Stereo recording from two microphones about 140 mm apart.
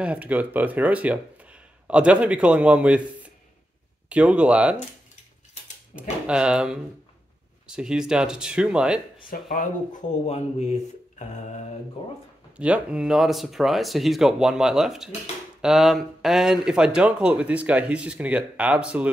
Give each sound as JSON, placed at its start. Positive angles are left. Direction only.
{"t": 0.0, "sound": "speech", "side_deg": -10}
{"t": 6.2, "sound": "speech", "side_deg": -5}
{"t": 9.3, "sound": "speech", "side_deg": 75}
{"t": 12.0, "sound": "speech", "side_deg": 40}
{"t": 12.5, "sound": "speech", "side_deg": -10}